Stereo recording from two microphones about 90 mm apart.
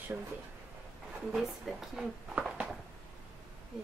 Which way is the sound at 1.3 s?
5° right (ahead or behind).